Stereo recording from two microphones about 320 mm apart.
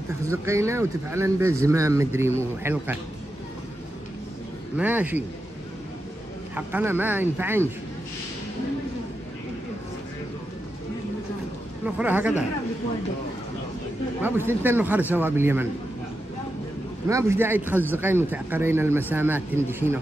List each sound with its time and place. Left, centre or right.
0.3 s speech: centre
4.7 s a man's voice: centre
6.5 s speech: centre
11.8 s a man's voice: centre
14.2 s speech: centre
17.1 s speech: centre